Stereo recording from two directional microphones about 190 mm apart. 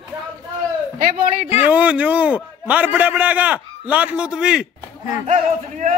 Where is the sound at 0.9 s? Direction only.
45° right (ahead or behind).